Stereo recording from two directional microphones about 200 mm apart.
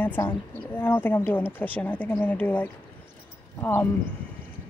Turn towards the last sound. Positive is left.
turn(degrees=10)  # may be behind; listen again after turning